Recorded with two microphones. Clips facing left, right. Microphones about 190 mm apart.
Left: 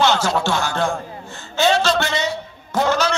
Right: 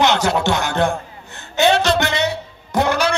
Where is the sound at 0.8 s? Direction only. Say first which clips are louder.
Right 2 dB; 60° right (ahead or behind).